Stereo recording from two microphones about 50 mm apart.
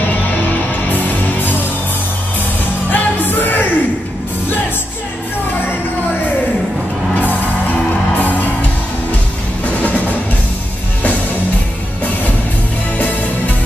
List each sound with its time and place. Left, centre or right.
0.8 s music: left
2.9 s music: left
9.8 s music: left
12.9 s music: left